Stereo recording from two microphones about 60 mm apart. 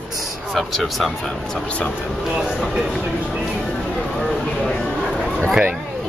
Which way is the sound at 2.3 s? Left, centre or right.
Centre.